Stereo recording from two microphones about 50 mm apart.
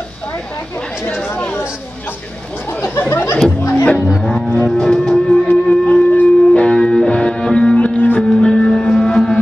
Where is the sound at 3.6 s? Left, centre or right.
Left.